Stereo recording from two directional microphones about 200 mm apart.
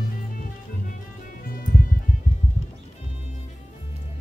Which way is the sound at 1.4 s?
45° left (ahead or behind).